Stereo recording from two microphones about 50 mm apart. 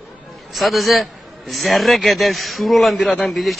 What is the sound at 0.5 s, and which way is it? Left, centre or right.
A man's voice, centre.